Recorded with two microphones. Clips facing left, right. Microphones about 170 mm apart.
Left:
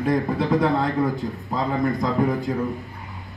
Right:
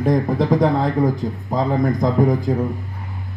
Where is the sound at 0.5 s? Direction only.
20° right (ahead or behind).